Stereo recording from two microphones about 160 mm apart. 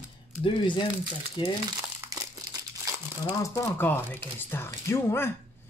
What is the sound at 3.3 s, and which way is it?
Speech, 20° left (ahead or behind).